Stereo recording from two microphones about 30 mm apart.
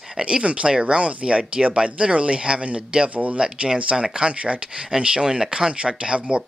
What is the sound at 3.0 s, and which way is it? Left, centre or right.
Speech, right.